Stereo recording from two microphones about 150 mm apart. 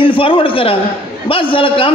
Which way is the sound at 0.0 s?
35° left (ahead or behind).